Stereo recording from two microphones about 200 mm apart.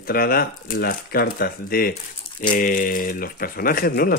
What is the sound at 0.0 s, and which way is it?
Speech, 50° left (ahead or behind).